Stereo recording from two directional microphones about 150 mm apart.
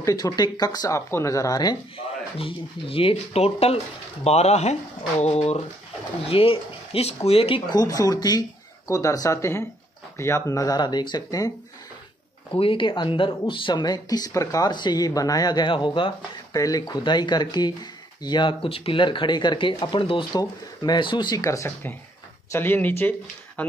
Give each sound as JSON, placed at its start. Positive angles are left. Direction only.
{"t": 0.0, "sound": "speech", "side_deg": 25}
{"t": 2.0, "sound": "speech", "side_deg": 40}
{"t": 7.7, "sound": "speech", "side_deg": 25}
{"t": 12.5, "sound": "speech", "side_deg": 35}